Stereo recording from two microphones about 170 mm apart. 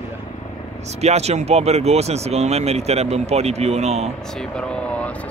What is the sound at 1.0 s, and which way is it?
Speech, 40° right (ahead or behind).